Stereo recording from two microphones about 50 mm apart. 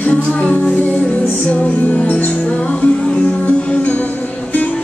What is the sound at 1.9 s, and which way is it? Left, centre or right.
Music, left.